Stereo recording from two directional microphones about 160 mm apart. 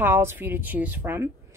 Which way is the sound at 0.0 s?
15° right (ahead or behind).